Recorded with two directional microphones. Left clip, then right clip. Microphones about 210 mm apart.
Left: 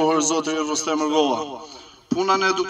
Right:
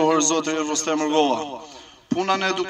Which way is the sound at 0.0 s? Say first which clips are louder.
Even; 15° right (ahead or behind).